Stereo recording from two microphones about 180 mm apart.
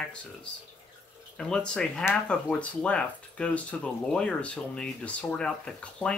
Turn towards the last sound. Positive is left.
turn(degrees=5)  # may be behind; listen again after turning